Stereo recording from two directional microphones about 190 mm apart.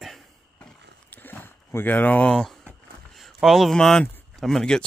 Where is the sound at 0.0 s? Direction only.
Centre (ahead or behind).